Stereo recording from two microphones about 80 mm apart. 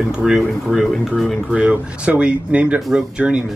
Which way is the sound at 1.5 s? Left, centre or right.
Centre.